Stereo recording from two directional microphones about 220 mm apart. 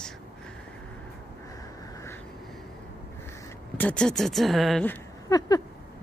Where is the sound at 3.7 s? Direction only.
5° left (ahead or behind).